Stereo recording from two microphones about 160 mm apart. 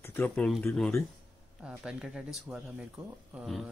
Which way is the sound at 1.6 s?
5° right (ahead or behind).